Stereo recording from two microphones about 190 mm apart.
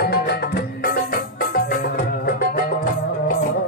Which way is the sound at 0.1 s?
55° left (ahead or behind).